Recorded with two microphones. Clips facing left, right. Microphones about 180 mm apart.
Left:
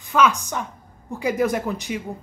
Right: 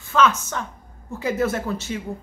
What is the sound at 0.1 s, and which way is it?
A woman's voice, 15° left (ahead or behind).